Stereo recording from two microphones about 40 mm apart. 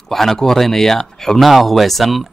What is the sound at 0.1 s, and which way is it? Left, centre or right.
Speech, centre.